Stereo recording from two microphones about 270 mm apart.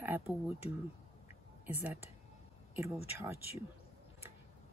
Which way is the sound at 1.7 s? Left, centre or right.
Centre.